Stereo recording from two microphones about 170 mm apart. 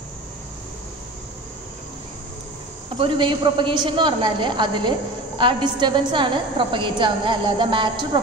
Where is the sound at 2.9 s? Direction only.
30° right (ahead or behind).